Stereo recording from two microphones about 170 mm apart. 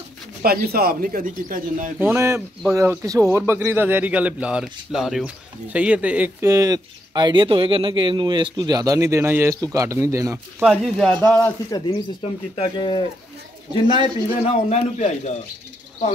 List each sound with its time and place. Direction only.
0.4 s speech: 65° right (ahead or behind)
2.0 s a man's voice: 10° right (ahead or behind)
6.4 s speech: 20° right (ahead or behind)
10.6 s speech: 5° left (ahead or behind)
11.7 s speech: 30° left (ahead or behind)
14.0 s a man's voice: 40° left (ahead or behind)